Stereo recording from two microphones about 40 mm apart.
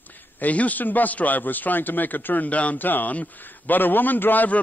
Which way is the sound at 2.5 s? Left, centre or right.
Left.